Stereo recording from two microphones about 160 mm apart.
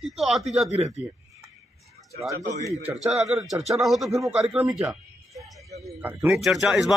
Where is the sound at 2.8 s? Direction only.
5° right (ahead or behind).